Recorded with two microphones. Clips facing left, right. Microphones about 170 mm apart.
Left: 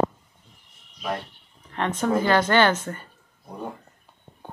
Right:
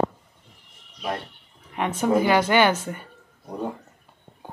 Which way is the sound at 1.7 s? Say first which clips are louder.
Right 2 dB; 10° right (ahead or behind).